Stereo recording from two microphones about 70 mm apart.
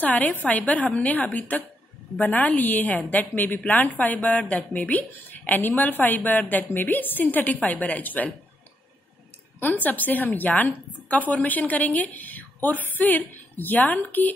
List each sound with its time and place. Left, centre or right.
0.0 s speech: left
9.8 s speech: left